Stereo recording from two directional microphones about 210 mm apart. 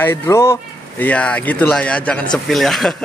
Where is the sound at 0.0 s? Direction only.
10° left (ahead or behind).